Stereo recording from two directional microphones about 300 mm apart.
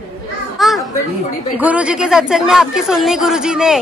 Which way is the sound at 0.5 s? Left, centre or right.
Centre.